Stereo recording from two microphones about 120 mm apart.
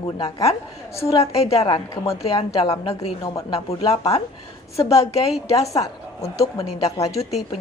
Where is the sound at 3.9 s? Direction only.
60° left (ahead or behind).